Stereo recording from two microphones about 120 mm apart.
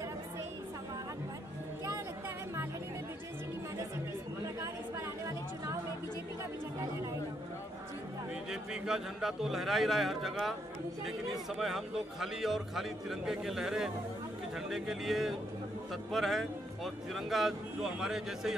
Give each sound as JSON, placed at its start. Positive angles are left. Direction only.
{"t": 4.6, "sound": "chatter", "side_deg": -25}
{"t": 8.5, "sound": "speech", "side_deg": -5}
{"t": 11.5, "sound": "speech", "side_deg": 0}